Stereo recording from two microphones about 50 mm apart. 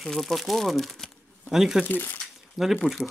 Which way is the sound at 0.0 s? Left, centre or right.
Centre.